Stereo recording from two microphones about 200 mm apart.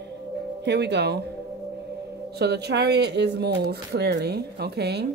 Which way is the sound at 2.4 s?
55° right (ahead or behind).